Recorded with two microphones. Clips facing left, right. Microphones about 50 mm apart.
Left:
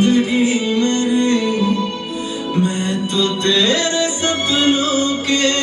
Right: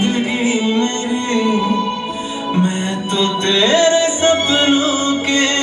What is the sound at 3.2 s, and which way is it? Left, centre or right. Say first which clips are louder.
Music: right 1 dB; right.